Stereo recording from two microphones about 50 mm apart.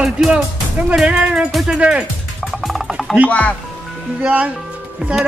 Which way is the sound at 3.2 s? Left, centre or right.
Left.